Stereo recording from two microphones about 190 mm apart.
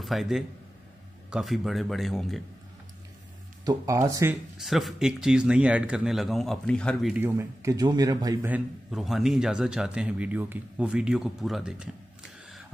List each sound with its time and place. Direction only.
0.0 s a man's voice: centre (ahead or behind)
3.6 s speech: 15° right (ahead or behind)
4.6 s a man's voice: centre (ahead or behind); by 8.5 s 20° right (ahead or behind)
8.5 s a man's voice: 5° right (ahead or behind)